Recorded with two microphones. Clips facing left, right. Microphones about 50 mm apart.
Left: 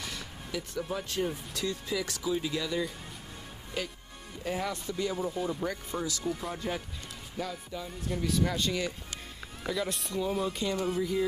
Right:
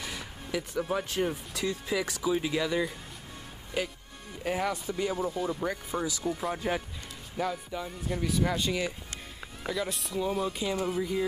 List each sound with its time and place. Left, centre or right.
0.0 s vehicle: centre
1.5 s speech: centre
5.1 s speech: centre